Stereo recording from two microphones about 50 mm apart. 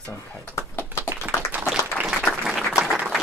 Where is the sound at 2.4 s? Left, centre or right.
Centre.